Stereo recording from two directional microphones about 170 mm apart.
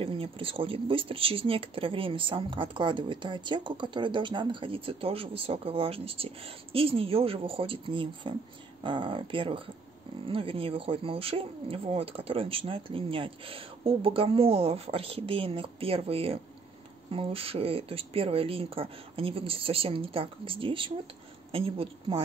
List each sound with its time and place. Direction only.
0.0 s speech: 30° right (ahead or behind)